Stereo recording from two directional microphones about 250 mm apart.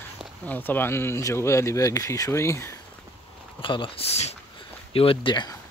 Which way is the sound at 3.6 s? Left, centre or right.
Centre.